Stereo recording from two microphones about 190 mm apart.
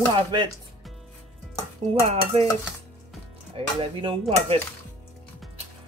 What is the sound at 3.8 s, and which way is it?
Speech, 30° right (ahead or behind).